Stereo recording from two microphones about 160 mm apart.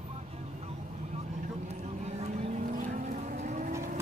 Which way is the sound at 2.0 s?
45° right (ahead or behind).